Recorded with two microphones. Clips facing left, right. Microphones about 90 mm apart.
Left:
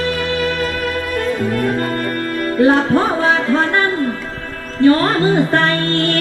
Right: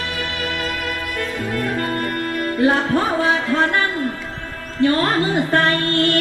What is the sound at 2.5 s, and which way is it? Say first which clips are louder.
Music: left 5 dB; 30° left (ahead or behind).